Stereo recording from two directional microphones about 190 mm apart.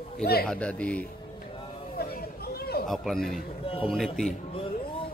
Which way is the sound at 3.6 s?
30° left (ahead or behind).